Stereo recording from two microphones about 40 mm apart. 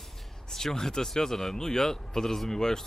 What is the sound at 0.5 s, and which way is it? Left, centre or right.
Speech, centre.